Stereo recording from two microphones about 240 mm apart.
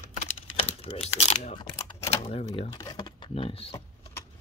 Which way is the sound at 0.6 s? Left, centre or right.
Left.